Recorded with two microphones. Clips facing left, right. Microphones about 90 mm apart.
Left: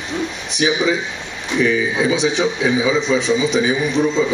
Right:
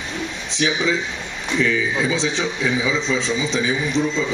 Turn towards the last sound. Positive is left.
turn(degrees=20)  # may be behind; listen again after turning